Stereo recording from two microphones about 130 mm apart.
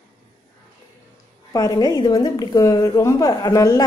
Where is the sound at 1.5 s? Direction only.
30° left (ahead or behind).